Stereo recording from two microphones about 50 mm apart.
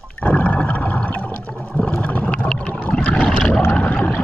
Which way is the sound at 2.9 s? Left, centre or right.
Left.